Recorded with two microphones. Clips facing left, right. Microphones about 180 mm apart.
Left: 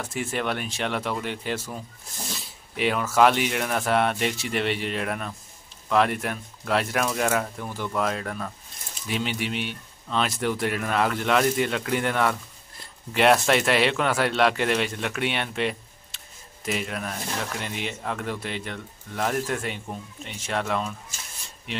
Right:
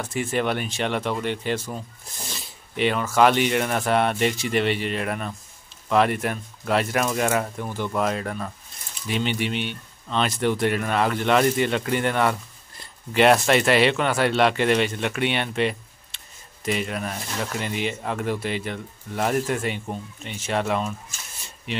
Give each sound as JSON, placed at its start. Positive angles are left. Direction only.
{"t": 0.0, "sound": "speech", "side_deg": 0}